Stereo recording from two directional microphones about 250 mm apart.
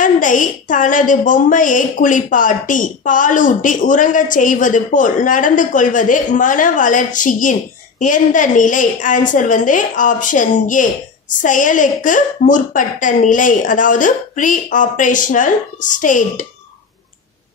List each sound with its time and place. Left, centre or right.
0.0 s a woman's voice: left